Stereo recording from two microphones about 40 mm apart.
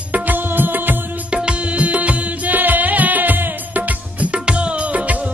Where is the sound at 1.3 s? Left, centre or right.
Right.